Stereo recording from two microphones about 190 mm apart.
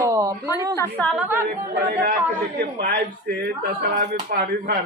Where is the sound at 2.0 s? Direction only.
50° right (ahead or behind).